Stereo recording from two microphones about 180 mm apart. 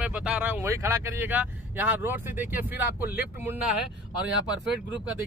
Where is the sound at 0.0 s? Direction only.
5° right (ahead or behind).